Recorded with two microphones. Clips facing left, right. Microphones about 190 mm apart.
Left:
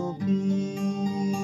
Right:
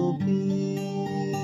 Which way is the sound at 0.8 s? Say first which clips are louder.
Left 2 dB; 25° right (ahead or behind).